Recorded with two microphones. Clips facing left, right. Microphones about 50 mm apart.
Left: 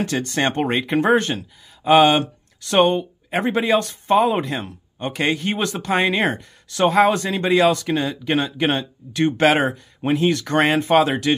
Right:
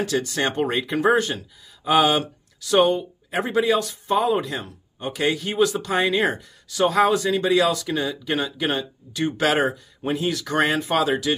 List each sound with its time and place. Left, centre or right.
0.0 s speech: left